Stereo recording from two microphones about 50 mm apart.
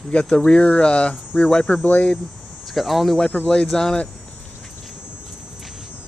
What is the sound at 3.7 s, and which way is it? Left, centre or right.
Speech, centre.